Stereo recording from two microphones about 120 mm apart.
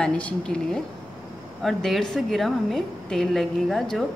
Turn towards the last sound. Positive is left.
turn(degrees=0)  # may be behind; listen again after turning